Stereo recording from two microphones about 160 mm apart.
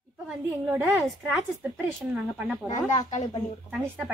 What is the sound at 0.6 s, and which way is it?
Speech, 15° right (ahead or behind).